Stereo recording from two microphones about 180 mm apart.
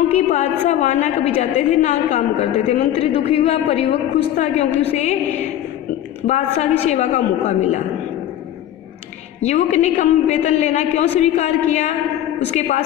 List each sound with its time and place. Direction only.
0.1 s a woman's voice: 40° left (ahead or behind)
9.4 s a woman's voice: 40° left (ahead or behind)